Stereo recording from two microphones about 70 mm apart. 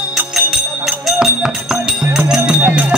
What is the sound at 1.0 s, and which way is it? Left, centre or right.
Music, centre.